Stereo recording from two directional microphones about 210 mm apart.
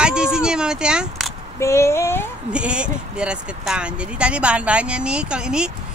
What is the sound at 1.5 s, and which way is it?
Female singing, 15° left (ahead or behind).